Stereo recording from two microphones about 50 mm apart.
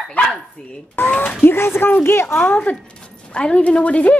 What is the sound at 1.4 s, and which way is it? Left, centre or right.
Speech, left.